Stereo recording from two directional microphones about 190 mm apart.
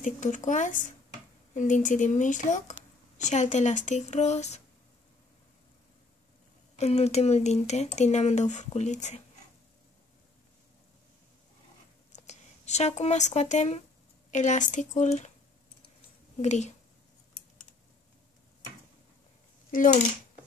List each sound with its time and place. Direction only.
0.0 s speech: 40° left (ahead or behind)
6.8 s speech: 35° left (ahead or behind)
12.3 s speech: 35° left (ahead or behind)
16.3 s speech: 35° left (ahead or behind)